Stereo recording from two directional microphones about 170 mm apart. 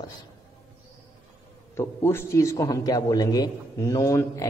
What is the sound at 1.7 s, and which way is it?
A man's voice, 15° left (ahead or behind).